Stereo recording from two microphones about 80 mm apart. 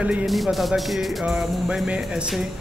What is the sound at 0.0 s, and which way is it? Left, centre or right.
Speech, centre.